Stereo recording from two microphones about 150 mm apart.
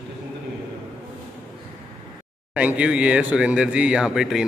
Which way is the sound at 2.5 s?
10° right (ahead or behind).